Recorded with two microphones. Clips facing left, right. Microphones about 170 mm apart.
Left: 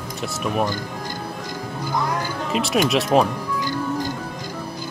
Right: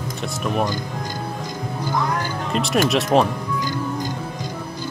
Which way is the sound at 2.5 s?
Centre (ahead or behind).